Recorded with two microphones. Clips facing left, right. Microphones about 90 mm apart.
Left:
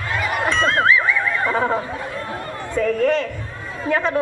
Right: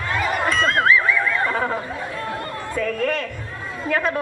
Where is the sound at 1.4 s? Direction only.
25° left (ahead or behind).